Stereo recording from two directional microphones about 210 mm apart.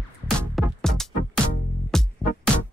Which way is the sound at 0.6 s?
Centre (ahead or behind).